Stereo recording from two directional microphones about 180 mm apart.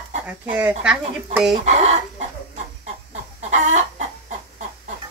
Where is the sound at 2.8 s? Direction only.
40° right (ahead or behind).